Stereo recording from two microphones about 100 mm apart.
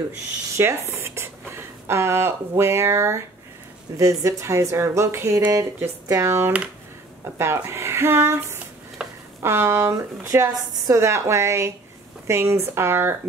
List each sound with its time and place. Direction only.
0.6 s a woman's voice: 25° right (ahead or behind)
9.0 s a sound: 10° right (ahead or behind)
9.4 s a woman's voice: 25° right (ahead or behind)